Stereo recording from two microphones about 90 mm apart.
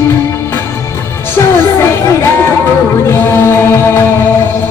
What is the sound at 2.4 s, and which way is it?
Music, 25° left (ahead or behind).